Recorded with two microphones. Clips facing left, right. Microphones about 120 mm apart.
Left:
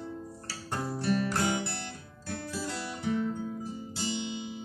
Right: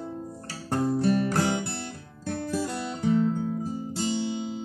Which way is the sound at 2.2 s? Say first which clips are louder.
Right 8 dB; 50° right (ahead or behind).